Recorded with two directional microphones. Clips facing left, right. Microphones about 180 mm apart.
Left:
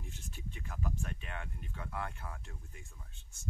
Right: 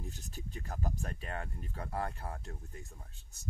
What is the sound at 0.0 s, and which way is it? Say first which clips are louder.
Speech: right 3 dB; 40° right (ahead or behind).